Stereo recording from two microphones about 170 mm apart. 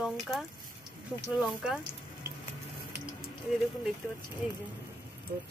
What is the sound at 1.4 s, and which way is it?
Speech, 5° right (ahead or behind).